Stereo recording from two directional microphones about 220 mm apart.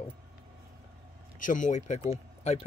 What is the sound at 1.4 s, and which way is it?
Speech, 35° left (ahead or behind).